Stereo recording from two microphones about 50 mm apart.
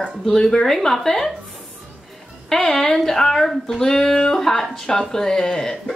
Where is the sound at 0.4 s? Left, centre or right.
Centre.